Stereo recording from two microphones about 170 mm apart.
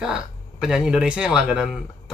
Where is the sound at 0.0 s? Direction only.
5° right (ahead or behind).